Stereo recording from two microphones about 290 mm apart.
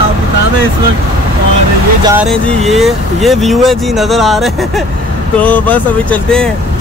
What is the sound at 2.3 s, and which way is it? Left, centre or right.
Speech, centre.